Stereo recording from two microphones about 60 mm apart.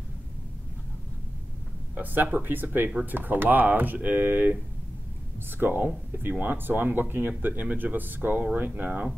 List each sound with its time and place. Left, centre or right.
2.0 s speech: right
5.6 s speech: right